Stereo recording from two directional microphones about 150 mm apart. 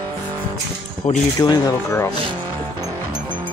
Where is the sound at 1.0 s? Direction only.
5° left (ahead or behind).